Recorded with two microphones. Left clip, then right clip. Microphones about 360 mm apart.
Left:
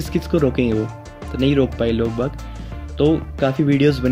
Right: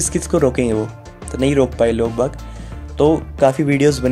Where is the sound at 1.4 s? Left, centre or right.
Centre.